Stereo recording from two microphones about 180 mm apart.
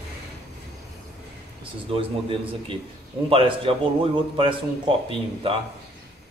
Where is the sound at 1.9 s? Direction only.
30° right (ahead or behind).